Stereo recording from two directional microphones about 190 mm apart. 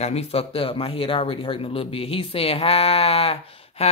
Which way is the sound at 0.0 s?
35° left (ahead or behind).